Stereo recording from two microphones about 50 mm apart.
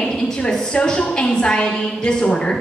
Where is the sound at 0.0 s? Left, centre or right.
Centre.